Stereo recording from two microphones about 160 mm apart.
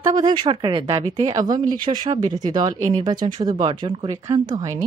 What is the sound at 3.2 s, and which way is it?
Speech, 25° right (ahead or behind).